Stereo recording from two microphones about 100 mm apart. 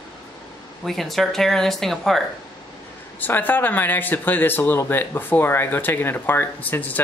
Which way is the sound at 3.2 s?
20° left (ahead or behind).